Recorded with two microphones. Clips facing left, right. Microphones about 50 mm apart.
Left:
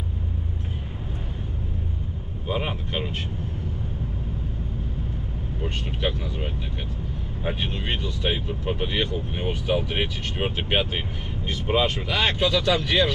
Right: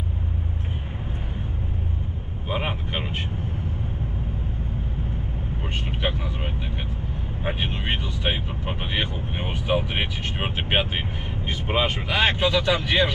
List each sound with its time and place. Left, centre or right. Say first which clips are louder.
2.5 s vehicle: even; right
5.6 s speech: left 1 dB; right
7.4 s speech: right 1 dB; right